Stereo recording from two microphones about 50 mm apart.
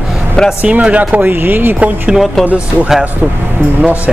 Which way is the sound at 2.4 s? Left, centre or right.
Right.